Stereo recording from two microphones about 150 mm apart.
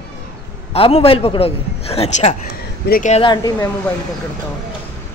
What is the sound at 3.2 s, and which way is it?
Speech, 30° left (ahead or behind).